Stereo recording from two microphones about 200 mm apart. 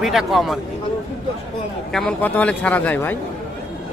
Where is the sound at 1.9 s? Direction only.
5° left (ahead or behind).